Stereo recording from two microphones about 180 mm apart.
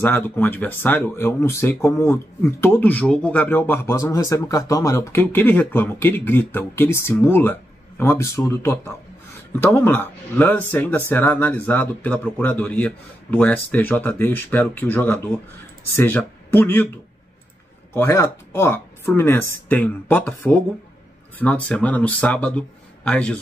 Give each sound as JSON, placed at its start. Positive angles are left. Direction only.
{"t": 0.0, "sound": "speech", "side_deg": 10}
{"t": 17.9, "sound": "speech", "side_deg": 15}